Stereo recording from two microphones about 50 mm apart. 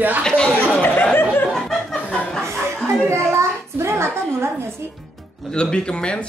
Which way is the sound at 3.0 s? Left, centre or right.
Right.